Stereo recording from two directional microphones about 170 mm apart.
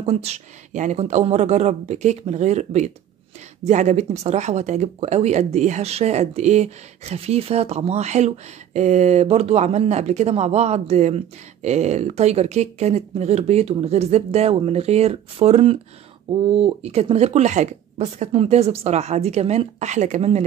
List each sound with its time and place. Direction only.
0.0 s speech: 40° right (ahead or behind)